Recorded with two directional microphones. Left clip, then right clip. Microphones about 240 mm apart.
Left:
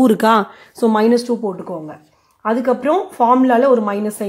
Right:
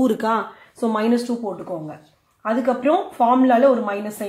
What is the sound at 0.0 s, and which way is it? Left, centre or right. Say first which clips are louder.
A woman's voice: left 7 dB; left.